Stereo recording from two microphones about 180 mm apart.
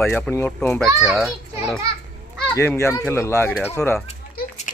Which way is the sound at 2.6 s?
15° left (ahead or behind).